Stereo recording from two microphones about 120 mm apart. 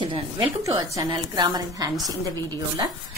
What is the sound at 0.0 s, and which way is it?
Speech, 45° right (ahead or behind).